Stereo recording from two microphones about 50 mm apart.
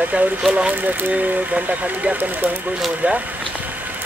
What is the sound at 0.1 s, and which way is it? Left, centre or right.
Speech, centre.